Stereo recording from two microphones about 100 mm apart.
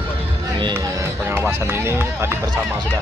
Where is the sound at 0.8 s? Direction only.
25° right (ahead or behind).